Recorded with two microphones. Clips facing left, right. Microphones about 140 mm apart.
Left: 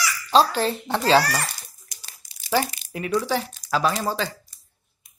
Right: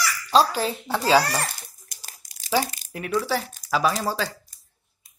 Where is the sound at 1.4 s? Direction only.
45° right (ahead or behind).